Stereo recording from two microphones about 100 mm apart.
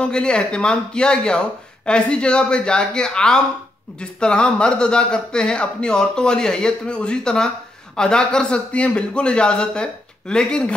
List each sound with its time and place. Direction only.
0.0 s speech: 10° left (ahead or behind)